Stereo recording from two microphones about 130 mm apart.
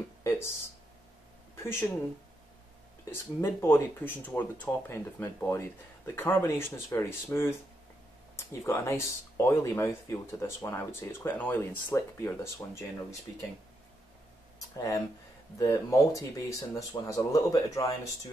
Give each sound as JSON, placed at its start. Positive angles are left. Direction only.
{"t": 0.2, "sound": "a sound", "side_deg": 20}
{"t": 1.6, "sound": "speech", "side_deg": 20}
{"t": 3.1, "sound": "speech", "side_deg": 20}
{"t": 8.6, "sound": "speech", "side_deg": 20}
{"t": 14.6, "sound": "speech", "side_deg": 25}